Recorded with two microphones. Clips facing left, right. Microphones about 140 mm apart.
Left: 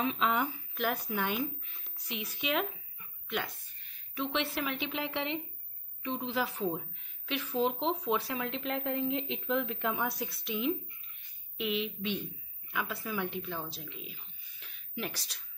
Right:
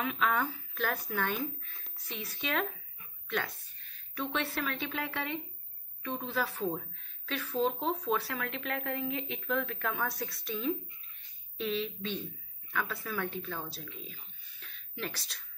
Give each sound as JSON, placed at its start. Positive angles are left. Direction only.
{"t": 0.0, "sound": "a woman's voice", "side_deg": 25}
{"t": 13.6, "sound": "speech", "side_deg": 0}
{"t": 14.6, "sound": "a sound", "side_deg": 10}